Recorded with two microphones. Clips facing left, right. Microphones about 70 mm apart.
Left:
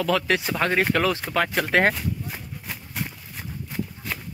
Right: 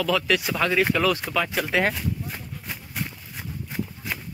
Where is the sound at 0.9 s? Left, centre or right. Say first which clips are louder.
Even; left.